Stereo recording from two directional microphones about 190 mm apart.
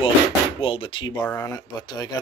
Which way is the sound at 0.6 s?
30° left (ahead or behind).